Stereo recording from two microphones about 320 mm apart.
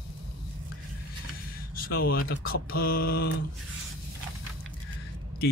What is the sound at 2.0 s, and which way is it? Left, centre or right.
Speech, left.